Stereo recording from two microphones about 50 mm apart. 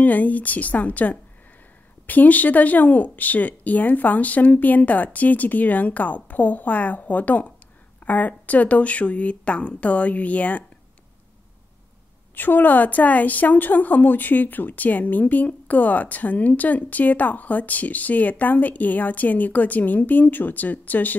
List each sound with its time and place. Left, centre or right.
0.0 s a woman's voice: left
12.4 s a woman's voice: left